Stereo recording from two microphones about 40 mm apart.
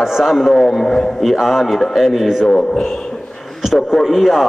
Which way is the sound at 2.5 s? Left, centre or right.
Centre.